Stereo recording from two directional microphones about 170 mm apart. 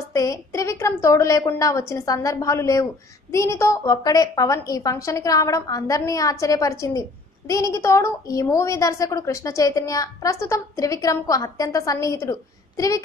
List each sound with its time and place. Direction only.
0.1 s a woman's voice: 20° left (ahead or behind)